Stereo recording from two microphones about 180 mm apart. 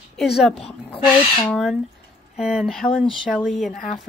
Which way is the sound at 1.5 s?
Centre (ahead or behind).